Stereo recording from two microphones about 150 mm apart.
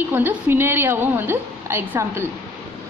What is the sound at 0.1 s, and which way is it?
A woman's voice, 15° right (ahead or behind).